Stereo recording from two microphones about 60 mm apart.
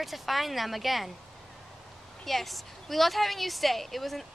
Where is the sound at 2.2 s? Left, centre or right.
Centre.